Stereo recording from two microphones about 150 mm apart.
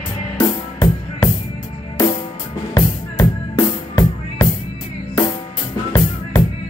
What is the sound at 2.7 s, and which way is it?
Music, 20° left (ahead or behind).